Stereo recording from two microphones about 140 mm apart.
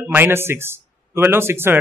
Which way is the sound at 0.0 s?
15° right (ahead or behind).